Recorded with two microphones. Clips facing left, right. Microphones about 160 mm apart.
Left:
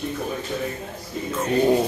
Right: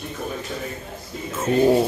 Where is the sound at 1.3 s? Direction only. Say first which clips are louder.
Right 2 dB; 5° right (ahead or behind).